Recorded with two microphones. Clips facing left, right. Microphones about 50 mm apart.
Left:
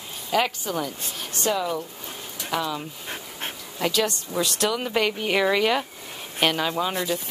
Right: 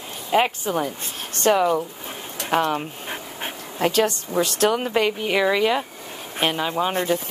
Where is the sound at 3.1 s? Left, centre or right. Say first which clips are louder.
Even; centre.